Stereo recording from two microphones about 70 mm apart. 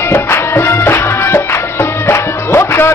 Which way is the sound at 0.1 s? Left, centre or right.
Left.